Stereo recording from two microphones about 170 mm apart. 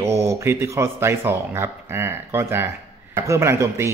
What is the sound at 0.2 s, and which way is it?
A man's voice, 15° right (ahead or behind).